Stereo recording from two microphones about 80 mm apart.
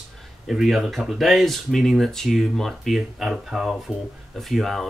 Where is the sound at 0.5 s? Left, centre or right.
Centre.